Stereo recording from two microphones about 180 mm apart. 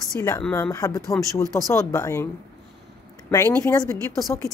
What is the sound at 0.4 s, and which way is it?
Speech, 15° left (ahead or behind).